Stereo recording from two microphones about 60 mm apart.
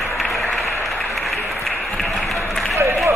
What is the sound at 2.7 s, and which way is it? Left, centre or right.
Run, right.